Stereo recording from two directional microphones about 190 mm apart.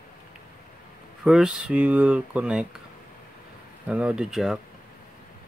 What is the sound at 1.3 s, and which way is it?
Speech, centre (ahead or behind).